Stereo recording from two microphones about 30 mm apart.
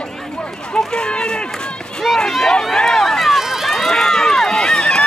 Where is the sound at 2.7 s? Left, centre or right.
Centre.